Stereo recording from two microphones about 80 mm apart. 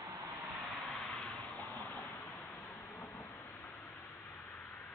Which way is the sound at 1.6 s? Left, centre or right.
Left.